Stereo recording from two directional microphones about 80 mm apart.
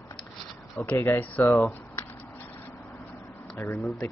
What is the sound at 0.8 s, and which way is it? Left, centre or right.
Speech, centre.